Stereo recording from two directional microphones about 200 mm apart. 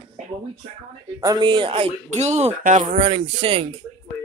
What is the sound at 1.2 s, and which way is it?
Speech, 20° right (ahead or behind).